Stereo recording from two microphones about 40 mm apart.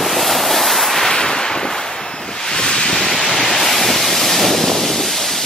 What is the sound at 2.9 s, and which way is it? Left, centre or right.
Waves, centre.